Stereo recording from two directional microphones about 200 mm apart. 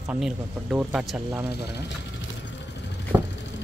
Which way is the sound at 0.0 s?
5° right (ahead or behind).